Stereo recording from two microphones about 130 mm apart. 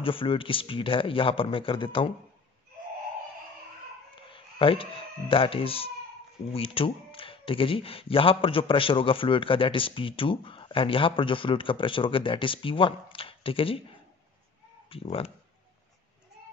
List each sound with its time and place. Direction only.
0.0 s speech: 45° left (ahead or behind)
4.1 s a sound: 40° left (ahead or behind)
5.3 s speech: 45° left (ahead or behind)
14.9 s speech: 45° left (ahead or behind)